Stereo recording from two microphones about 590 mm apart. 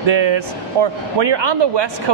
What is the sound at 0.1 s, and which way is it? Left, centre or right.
Speech, right.